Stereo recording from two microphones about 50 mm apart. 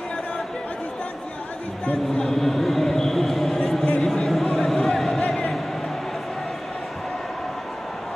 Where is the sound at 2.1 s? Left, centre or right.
Centre.